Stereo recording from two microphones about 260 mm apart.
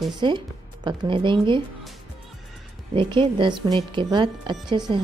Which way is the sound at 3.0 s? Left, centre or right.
Centre.